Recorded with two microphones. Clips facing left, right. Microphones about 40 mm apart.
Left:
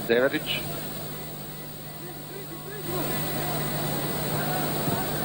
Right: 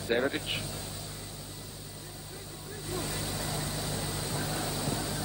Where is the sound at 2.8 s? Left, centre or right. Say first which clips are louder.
Left 5 dB; left.